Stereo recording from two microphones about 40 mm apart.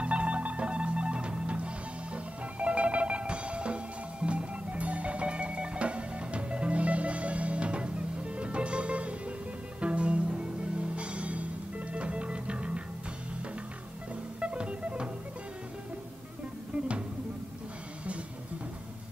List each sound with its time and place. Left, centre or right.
0.0 s music: right
14.4 s music: right